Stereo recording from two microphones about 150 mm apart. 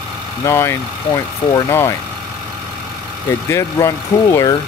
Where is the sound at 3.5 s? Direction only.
20° left (ahead or behind).